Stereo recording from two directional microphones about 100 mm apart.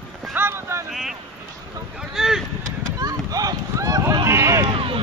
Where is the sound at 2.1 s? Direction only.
5° right (ahead or behind).